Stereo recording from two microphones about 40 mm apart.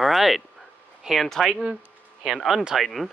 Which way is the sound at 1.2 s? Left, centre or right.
Centre.